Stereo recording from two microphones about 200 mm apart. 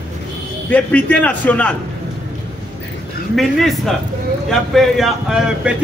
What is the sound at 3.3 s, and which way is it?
Speech, centre (ahead or behind).